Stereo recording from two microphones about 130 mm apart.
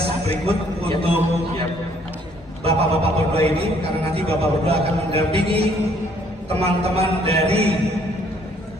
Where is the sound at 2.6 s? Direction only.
50° right (ahead or behind).